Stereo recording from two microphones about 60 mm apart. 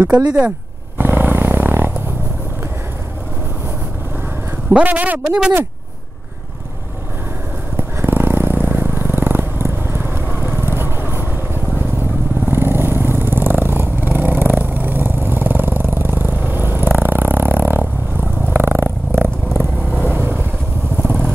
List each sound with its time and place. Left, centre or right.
0.0 s speech: right
0.9 s a sound: right
4.6 s speech: right
7.7 s vehicle: right
12.4 s a sound: right
18.5 s purr: right
19.9 s vehicle: right